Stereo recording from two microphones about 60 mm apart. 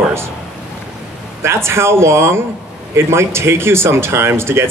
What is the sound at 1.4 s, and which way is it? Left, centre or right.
Speech, right.